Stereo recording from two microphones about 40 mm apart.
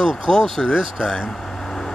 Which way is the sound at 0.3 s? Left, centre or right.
Centre.